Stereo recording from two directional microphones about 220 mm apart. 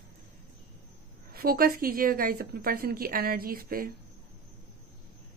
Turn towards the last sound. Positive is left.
turn(degrees=-40)  # may be behind; listen again after turning